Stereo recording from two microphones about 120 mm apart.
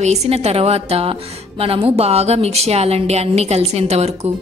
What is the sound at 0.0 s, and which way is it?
A woman's voice, 65° right (ahead or behind).